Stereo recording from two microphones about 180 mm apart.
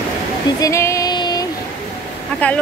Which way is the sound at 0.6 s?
15° left (ahead or behind).